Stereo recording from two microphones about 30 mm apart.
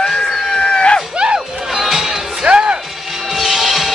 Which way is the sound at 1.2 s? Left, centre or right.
Right.